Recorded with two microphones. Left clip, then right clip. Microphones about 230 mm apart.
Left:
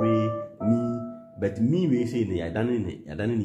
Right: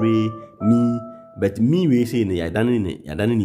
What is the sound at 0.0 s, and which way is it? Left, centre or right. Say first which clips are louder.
Music: right 4 dB; right.